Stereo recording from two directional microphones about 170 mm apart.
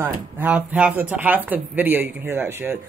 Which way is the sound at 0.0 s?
10° right (ahead or behind).